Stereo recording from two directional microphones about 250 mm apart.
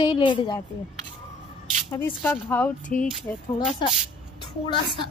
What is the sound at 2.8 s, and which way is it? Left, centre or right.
Speech, left.